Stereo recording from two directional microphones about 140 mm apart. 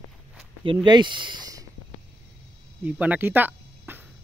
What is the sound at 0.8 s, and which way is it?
Speech, 30° right (ahead or behind).